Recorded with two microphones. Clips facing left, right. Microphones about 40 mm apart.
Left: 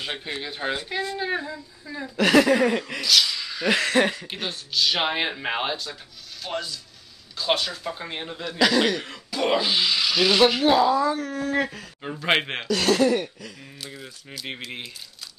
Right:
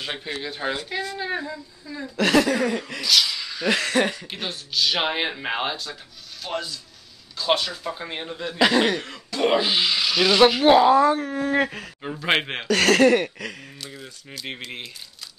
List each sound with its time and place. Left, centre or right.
0.0 s speech: centre
0.3 s speech: centre
2.4 s a sound: left
3.1 s speech: centre
8.5 s speech: right
9.6 s rub: centre
9.9 s speech: centre
10.6 s speech: right
10.9 s a sound: right
11.1 s speech: right
12.0 s speech: centre
12.6 s a sound: right
13.8 s speech: centre